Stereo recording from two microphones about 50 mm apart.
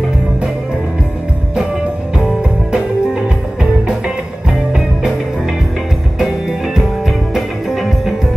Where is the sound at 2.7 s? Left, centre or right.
Centre.